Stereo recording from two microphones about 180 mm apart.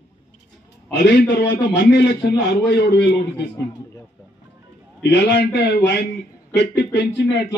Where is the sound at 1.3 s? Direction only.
80° left.